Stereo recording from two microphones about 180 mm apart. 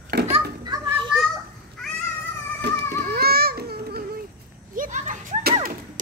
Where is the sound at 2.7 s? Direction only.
70° right (ahead or behind).